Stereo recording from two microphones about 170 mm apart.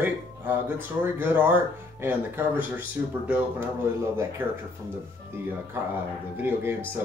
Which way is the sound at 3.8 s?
15° right (ahead or behind).